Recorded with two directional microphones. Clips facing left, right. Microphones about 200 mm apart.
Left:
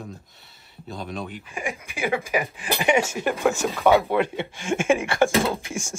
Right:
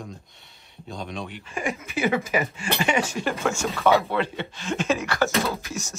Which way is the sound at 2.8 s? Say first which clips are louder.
Left 3 dB; 20° left (ahead or behind).